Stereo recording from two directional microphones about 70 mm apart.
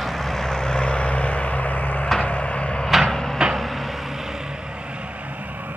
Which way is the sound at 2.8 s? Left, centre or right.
Centre.